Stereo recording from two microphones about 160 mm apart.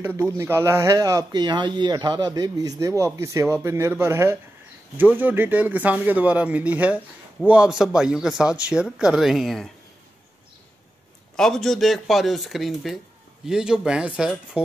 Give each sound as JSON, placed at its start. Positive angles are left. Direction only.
{"t": 0.0, "sound": "speech", "side_deg": -15}
{"t": 11.3, "sound": "speech", "side_deg": 5}